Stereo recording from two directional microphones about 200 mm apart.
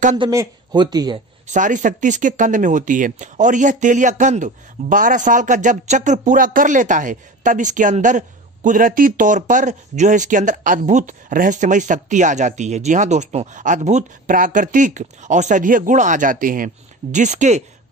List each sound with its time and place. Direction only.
0.2 s speech: 20° right (ahead or behind)
1.5 s speech: 40° right (ahead or behind)